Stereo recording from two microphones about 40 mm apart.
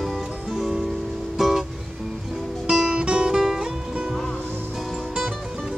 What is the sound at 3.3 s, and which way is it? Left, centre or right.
Music, centre.